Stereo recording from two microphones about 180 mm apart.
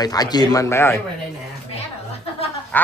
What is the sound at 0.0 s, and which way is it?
A man's voice, 20° left (ahead or behind).